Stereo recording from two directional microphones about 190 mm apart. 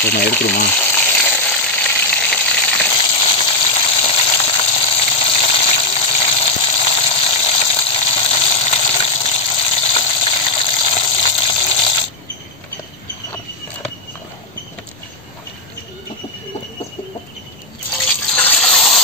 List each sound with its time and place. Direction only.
0.0 s speech: 60° left (ahead or behind)
0.7 s sizzle: 10° left (ahead or behind)
3.0 s a sound: 25° left (ahead or behind)
17.9 s water: 10° left (ahead or behind)